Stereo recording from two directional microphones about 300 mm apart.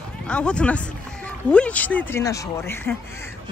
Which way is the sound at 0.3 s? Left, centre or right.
Centre.